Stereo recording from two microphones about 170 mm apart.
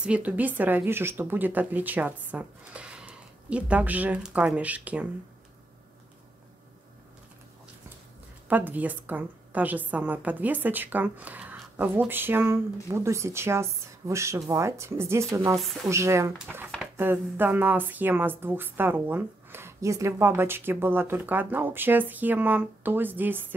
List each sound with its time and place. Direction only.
0.0 s speech: 10° right (ahead or behind)
8.5 s speech: 10° right (ahead or behind)
15.5 s speech: centre (ahead or behind)
15.9 s speech: 15° right (ahead or behind)